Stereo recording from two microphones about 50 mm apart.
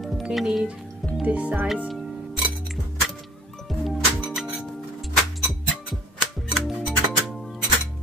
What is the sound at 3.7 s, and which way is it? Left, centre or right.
Music, centre.